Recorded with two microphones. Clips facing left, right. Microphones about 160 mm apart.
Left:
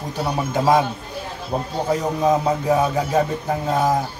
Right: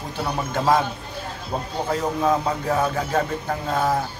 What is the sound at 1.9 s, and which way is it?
Speech, 20° left (ahead or behind).